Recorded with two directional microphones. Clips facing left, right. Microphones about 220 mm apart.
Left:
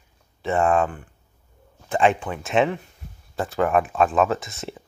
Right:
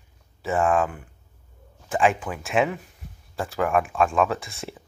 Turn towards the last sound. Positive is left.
turn(degrees=0)  # may be behind; listen again after turning